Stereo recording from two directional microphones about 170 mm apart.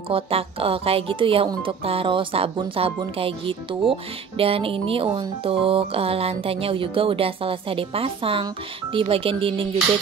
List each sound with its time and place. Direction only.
0.1 s speech: 35° right (ahead or behind)